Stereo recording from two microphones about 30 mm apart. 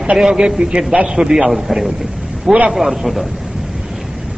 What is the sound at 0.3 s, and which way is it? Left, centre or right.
A man's voice, right.